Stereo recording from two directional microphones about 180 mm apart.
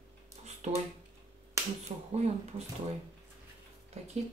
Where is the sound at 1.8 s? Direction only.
35° right (ahead or behind).